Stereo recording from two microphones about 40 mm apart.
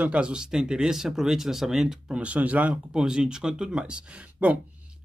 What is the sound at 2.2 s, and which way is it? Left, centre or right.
Speech, right.